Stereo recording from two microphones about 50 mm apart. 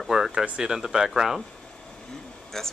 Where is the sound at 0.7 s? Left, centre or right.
Centre.